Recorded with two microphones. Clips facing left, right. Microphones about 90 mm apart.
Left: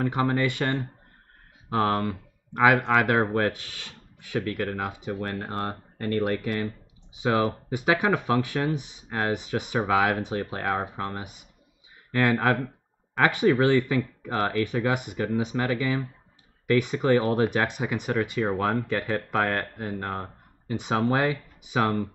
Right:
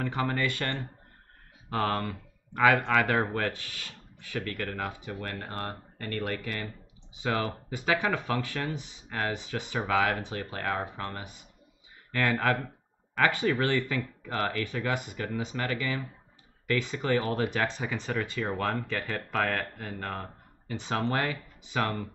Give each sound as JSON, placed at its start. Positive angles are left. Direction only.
{"t": 0.0, "sound": "speech", "side_deg": 15}